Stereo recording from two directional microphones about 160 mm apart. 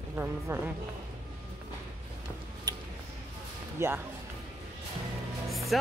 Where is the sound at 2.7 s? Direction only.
25° right (ahead or behind).